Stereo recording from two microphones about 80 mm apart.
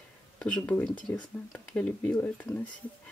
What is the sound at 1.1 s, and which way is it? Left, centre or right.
Speech, left.